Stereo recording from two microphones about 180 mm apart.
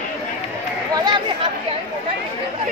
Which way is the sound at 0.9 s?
25° right (ahead or behind).